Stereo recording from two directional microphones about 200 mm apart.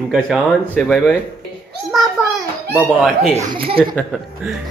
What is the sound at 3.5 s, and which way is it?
Speech, 25° right (ahead or behind).